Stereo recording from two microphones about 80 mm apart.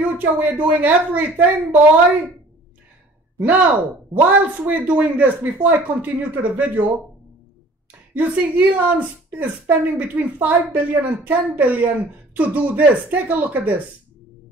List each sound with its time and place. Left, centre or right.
0.1 s a woman's voice: right
3.3 s a woman's voice: centre
8.1 s a woman's voice: centre